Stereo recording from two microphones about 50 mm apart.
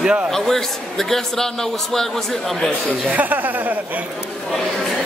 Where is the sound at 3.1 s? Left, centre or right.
Right.